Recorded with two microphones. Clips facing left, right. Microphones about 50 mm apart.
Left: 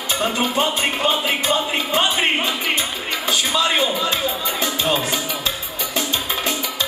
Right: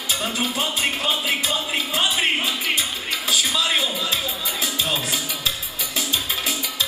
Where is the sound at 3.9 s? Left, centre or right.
Centre.